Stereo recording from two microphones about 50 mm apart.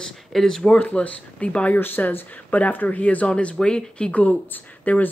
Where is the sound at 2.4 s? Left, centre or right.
Left.